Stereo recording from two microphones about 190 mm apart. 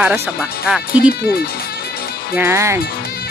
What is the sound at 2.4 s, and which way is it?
Speech, 15° right (ahead or behind).